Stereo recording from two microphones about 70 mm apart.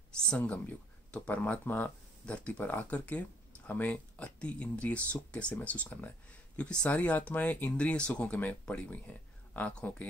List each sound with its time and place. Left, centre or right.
0.3 s speech: centre